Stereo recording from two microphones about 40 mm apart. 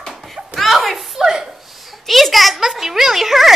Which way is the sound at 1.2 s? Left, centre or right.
Centre.